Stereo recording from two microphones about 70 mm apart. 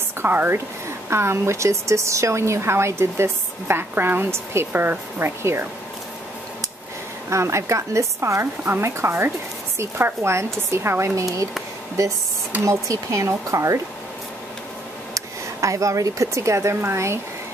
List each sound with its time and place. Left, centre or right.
0.2 s speech: right
7.2 s speech: right
11.1 s speech: right
12.6 s speech: right
15.1 s speech: right